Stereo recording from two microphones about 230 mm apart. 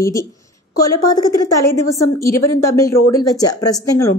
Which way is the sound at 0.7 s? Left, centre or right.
Centre.